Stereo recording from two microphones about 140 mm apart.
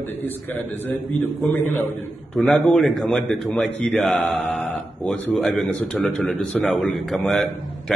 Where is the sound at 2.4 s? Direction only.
5° left (ahead or behind).